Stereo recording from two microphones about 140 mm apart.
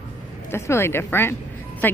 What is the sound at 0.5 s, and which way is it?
Speech, 20° left (ahead or behind).